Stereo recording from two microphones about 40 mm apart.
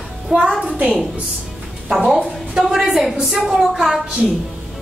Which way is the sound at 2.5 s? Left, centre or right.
Centre.